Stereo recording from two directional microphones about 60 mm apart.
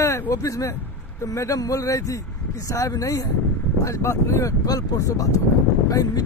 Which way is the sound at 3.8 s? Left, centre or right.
Left.